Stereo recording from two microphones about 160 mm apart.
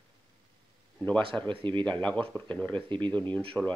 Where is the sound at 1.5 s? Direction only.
30° right (ahead or behind).